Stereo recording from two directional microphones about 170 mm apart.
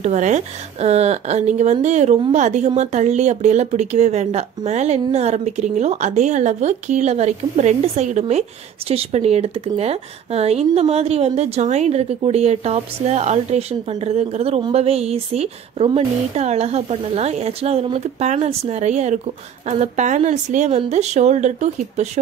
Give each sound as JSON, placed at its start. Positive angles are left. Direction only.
{"t": 0.0, "sound": "speech", "side_deg": -45}